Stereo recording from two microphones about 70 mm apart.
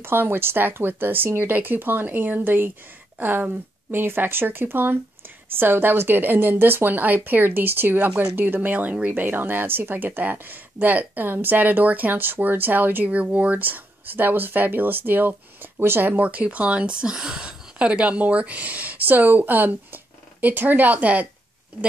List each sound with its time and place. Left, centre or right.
0.0 s speech: right